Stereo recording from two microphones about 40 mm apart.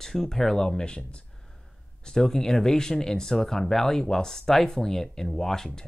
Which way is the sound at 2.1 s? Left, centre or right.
Centre.